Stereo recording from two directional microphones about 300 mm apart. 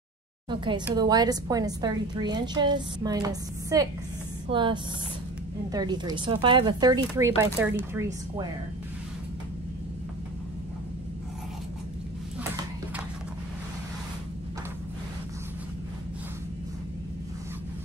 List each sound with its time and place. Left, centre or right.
0.5 s a woman's voice: centre